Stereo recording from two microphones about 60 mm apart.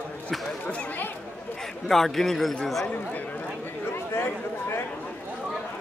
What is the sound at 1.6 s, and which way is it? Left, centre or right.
A man's voice, centre.